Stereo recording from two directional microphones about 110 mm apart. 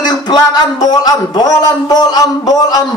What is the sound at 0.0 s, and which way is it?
Speech, 40° left (ahead or behind).